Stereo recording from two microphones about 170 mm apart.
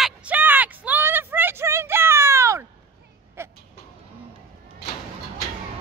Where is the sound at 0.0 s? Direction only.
10° right (ahead or behind).